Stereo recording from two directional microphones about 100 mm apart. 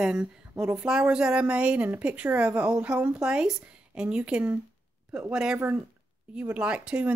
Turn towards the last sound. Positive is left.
turn(degrees=-10)  # may be behind; listen again after turning